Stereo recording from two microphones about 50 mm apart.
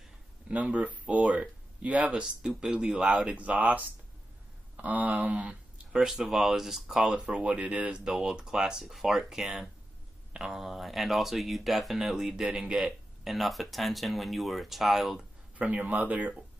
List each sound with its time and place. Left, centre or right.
0.5 s speech: right
2.2 s speech: centre
3.2 s speech: right
5.9 s speech: centre
7.1 s speech: centre
15.6 s speech: right